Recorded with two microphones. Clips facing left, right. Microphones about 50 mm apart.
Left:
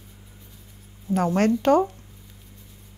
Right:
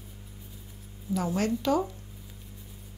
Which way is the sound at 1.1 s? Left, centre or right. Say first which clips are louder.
Left 7 dB; left.